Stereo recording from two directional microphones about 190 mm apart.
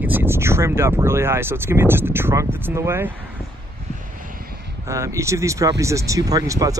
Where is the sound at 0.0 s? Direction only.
10° right (ahead or behind).